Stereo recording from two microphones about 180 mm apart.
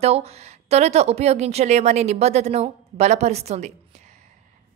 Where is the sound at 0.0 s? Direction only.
35° right (ahead or behind).